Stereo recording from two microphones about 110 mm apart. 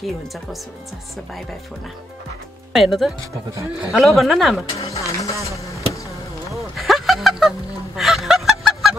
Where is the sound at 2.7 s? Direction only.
Centre (ahead or behind).